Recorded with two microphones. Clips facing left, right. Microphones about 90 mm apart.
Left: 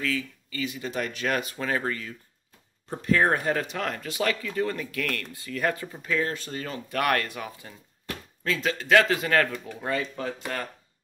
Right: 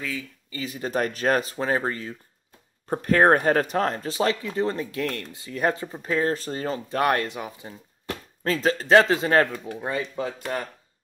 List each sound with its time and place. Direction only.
0.0 s speech: 25° right (ahead or behind)
2.9 s speech: 45° right (ahead or behind); by 7.7 s 20° right (ahead or behind)
8.5 s speech: 35° right (ahead or behind); by 10.3 s 20° right (ahead or behind)